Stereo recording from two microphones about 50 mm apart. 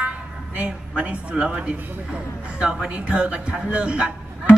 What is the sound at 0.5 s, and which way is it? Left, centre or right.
A woman's voice, right.